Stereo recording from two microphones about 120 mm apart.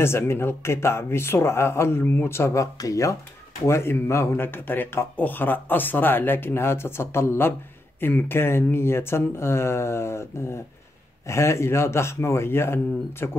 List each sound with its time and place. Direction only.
0.0 s speech: 20° left (ahead or behind)